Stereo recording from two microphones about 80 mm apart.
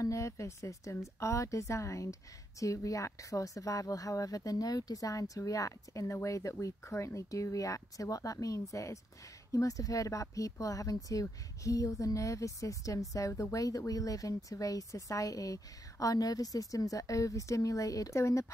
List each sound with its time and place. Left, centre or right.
0.0 s a woman's voice: left